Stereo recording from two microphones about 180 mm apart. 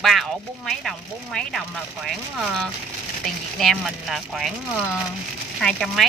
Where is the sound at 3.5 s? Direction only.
Centre (ahead or behind).